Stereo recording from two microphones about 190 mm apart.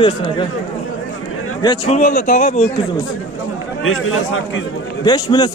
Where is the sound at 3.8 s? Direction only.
90° left.